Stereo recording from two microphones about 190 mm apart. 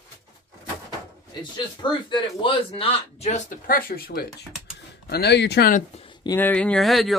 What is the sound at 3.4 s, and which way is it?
Speech, 50° left (ahead or behind).